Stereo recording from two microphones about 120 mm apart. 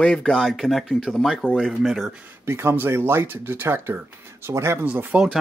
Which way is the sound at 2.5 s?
20° right (ahead or behind).